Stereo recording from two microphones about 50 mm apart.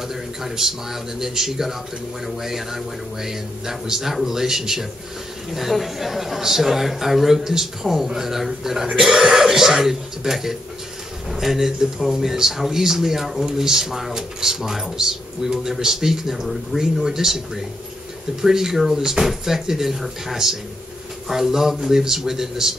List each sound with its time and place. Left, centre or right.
0.1 s a man's voice: centre